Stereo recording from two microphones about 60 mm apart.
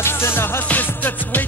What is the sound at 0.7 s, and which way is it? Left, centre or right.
Music, left.